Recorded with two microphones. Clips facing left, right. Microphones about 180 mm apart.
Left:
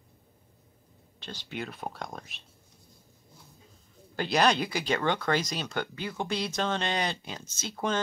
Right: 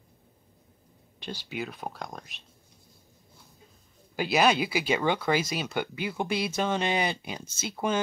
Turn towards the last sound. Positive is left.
turn(degrees=-10)  # may be behind; listen again after turning